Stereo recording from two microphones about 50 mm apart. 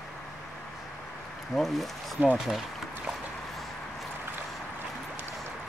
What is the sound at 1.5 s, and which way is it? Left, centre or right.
Speech, centre.